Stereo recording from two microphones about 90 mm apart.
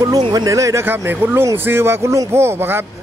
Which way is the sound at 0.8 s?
25° right (ahead or behind).